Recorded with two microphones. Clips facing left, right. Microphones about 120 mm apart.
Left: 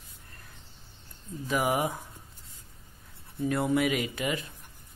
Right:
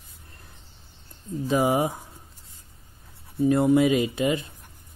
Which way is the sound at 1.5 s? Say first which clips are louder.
Right 5 dB; 25° right (ahead or behind).